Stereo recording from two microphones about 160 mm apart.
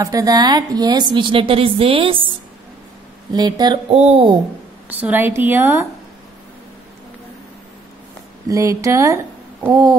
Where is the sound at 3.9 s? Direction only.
40° right (ahead or behind).